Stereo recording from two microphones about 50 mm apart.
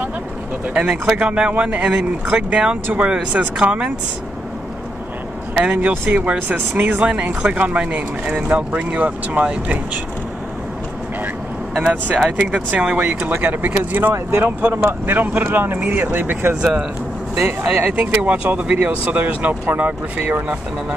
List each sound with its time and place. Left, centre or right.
0.7 s speech: centre
1.9 s speech: centre
6.0 s speech: right
11.8 s speech: right
17.8 s speech: right